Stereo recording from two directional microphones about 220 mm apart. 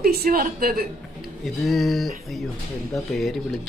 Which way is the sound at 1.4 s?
Centre (ahead or behind).